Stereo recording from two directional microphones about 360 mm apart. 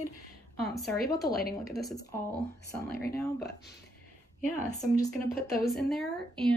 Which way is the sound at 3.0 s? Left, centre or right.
Left.